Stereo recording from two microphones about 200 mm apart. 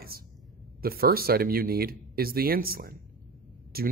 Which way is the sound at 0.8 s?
50° right (ahead or behind).